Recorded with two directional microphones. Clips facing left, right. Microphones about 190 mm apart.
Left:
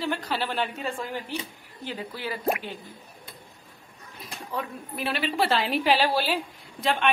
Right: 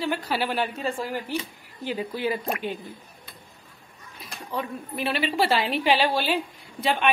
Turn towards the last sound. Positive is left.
turn(degrees=0)  # may be behind; listen again after turning